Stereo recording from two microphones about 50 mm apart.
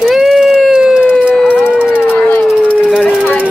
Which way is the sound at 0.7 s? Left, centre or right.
Centre.